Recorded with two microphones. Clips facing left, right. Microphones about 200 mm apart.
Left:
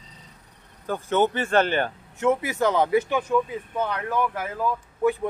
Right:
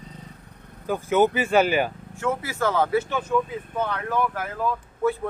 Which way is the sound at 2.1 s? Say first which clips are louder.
Left 5 dB; 20° left (ahead or behind).